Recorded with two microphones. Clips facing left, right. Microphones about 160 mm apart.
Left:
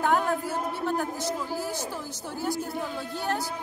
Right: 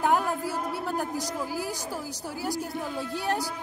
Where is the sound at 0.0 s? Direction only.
5° right (ahead or behind).